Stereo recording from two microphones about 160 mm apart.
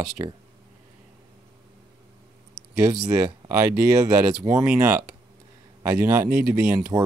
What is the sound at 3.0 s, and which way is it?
Speech, 15° right (ahead or behind).